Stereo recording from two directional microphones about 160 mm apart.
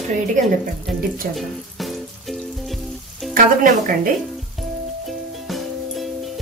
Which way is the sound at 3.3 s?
60° right (ahead or behind).